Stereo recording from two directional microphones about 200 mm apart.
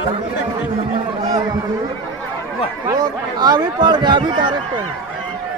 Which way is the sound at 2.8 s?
20° right (ahead or behind).